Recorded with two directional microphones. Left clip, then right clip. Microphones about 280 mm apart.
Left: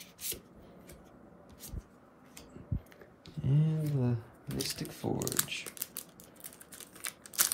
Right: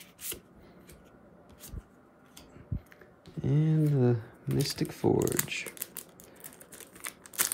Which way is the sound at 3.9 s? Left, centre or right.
Right.